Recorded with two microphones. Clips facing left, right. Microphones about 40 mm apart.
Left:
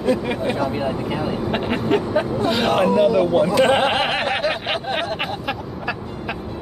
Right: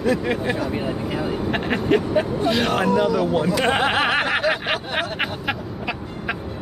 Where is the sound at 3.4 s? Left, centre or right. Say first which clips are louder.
Left 3 dB; centre.